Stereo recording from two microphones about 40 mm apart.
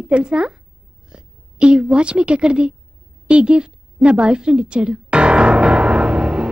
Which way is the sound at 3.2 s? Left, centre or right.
Right.